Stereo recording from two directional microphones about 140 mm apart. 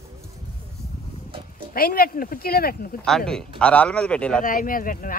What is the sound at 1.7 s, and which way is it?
Speech, 90° left.